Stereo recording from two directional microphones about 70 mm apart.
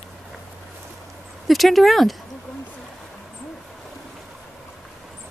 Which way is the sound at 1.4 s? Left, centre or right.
Centre.